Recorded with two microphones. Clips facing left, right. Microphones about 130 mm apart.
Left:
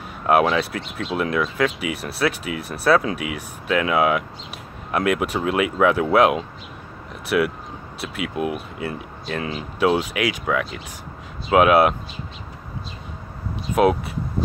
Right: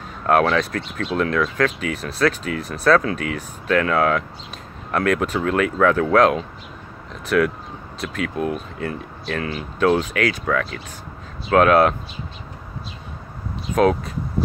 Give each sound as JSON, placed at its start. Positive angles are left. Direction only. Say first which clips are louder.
{"t": 0.3, "sound": "speech", "louder": "even", "side_deg": 10}
{"t": 9.4, "sound": "speech", "louder": "even", "side_deg": 20}
{"t": 9.8, "sound": "speech", "louder": "right 1 dB", "side_deg": 10}
{"t": 13.8, "sound": "speech", "louder": "even", "side_deg": 10}